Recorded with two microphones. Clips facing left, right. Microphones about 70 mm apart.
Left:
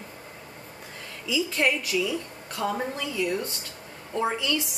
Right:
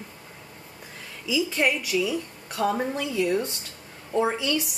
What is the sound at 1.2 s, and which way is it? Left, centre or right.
A woman's voice, centre.